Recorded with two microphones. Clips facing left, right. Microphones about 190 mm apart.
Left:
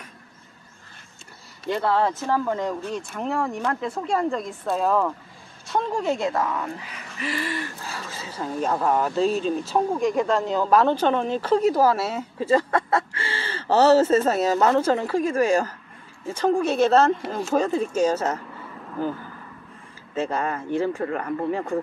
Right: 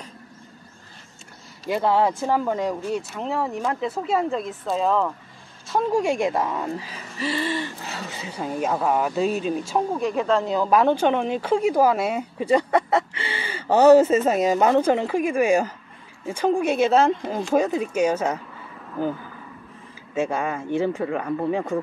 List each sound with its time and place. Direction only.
1.7 s speech: 15° right (ahead or behind)
20.2 s speech: 15° right (ahead or behind)